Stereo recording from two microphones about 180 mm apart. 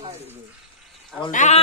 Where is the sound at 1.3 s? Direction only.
40° left (ahead or behind).